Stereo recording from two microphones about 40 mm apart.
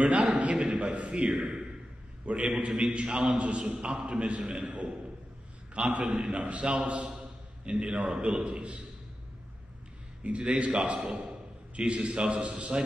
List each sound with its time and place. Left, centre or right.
0.0 s a man's voice: right
0.7 s a sound: right
1.3 s a man's voice: centre
2.2 s a man's voice: right
5.9 s a man's voice: right
10.2 s a man's voice: right